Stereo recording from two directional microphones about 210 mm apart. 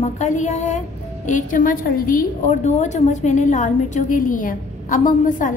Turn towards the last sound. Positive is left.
turn(degrees=40)  # may be behind; listen again after turning